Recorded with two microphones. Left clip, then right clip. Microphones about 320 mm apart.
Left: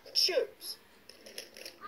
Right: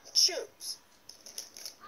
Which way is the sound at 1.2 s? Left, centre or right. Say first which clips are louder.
Right 1 dB; centre.